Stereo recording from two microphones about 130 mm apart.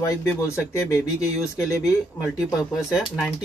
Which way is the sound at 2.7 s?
Centre (ahead or behind).